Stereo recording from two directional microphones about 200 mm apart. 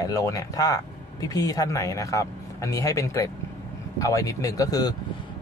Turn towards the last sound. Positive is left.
turn(degrees=20)  # may be behind; listen again after turning